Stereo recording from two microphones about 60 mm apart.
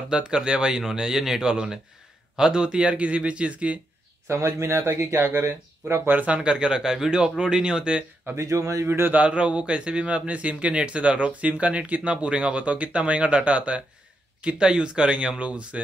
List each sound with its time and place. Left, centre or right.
0.1 s speech: centre
4.3 s speech: right
6.0 s speech: right
8.4 s speech: right
8.8 s speech: right
9.1 s speech: centre